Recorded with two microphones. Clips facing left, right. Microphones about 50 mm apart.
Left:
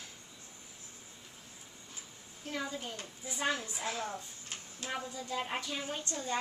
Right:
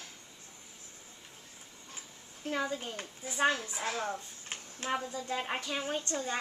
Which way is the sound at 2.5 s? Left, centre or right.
Right.